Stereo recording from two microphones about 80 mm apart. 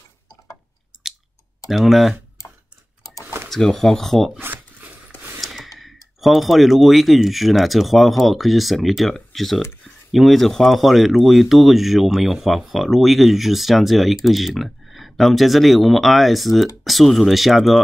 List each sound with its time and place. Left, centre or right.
1.7 s speech: centre
3.4 s speech: centre
4.4 s zipper: right
5.4 s a sound: centre
5.8 s speech: centre